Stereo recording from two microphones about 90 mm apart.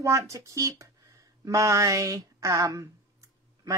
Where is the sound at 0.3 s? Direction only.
35° right (ahead or behind).